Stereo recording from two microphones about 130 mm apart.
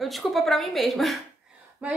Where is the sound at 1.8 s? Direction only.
10° right (ahead or behind).